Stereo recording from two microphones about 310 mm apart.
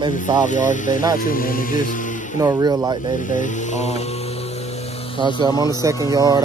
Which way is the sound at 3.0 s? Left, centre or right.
Left.